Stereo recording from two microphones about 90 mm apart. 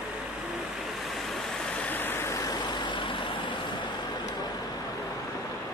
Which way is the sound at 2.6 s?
60° left (ahead or behind).